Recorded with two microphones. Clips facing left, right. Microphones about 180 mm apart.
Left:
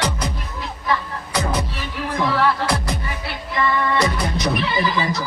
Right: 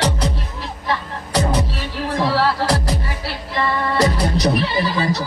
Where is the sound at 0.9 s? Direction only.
35° right (ahead or behind).